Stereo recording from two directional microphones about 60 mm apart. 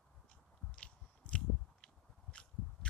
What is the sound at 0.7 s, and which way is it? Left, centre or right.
Biting, centre.